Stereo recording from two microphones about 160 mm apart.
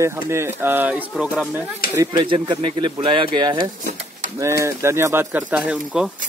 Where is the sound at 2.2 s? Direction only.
35° right (ahead or behind); by 5.4 s 15° right (ahead or behind).